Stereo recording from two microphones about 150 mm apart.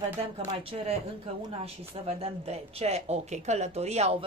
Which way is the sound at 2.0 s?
45° right (ahead or behind).